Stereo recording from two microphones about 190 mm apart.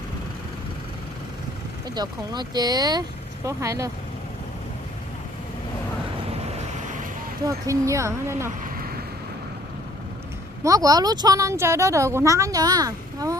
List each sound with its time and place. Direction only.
2.0 s speech: 20° right (ahead or behind)
7.4 s a woman's voice: 15° right (ahead or behind)
10.6 s a woman's voice: 20° right (ahead or behind)